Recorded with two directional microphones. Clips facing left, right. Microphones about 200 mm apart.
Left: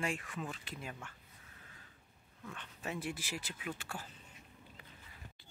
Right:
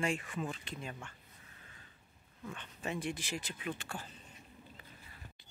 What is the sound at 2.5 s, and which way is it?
Speech, centre (ahead or behind).